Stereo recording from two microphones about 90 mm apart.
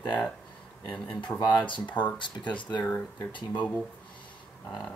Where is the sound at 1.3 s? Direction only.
10° left (ahead or behind).